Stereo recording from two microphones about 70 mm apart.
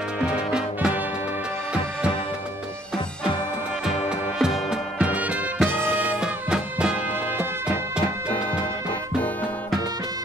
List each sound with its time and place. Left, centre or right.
0.2 s music: centre
4.4 s music: centre
5.1 s music: centre